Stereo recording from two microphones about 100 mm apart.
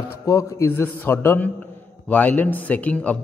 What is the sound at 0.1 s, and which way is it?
A man's voice, 30° left (ahead or behind).